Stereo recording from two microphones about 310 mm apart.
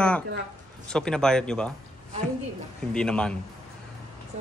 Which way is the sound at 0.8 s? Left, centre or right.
Centre.